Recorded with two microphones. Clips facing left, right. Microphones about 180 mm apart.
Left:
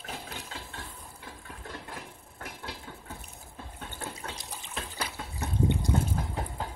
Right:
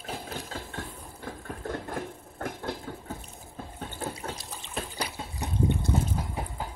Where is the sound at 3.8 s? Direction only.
40° right (ahead or behind).